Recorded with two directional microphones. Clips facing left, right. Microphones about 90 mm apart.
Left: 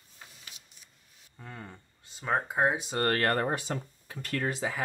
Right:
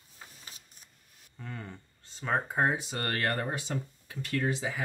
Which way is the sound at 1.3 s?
10° left (ahead or behind).